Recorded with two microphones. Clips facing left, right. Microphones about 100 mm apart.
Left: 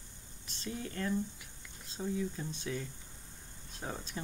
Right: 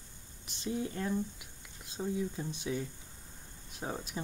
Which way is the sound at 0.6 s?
20° right (ahead or behind).